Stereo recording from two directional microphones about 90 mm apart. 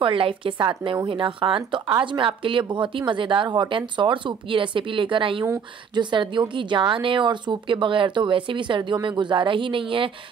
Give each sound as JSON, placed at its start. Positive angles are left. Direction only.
{"t": 0.0, "sound": "speech", "side_deg": -75}
{"t": 5.9, "sound": "speech", "side_deg": -60}